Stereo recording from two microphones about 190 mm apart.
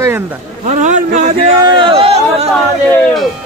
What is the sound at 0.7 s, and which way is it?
Speech, 40° right (ahead or behind).